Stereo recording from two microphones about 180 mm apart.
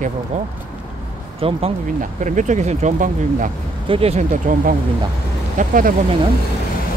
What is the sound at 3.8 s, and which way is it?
Speech, 35° right (ahead or behind).